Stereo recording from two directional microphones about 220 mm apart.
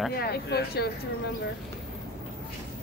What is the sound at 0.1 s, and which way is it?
Speech, 45° left (ahead or behind).